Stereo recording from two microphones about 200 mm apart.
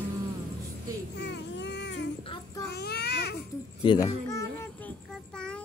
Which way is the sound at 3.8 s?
20° left (ahead or behind).